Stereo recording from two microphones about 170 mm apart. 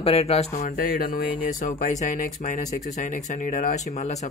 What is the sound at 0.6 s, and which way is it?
Speech, 55° left (ahead or behind).